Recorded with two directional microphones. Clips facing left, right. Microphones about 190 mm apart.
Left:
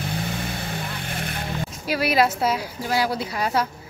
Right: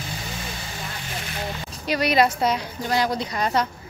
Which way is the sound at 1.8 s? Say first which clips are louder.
Right 1 dB; 5° left (ahead or behind).